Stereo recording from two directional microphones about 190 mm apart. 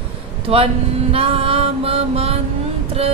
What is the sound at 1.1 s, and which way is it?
Music, 30° right (ahead or behind).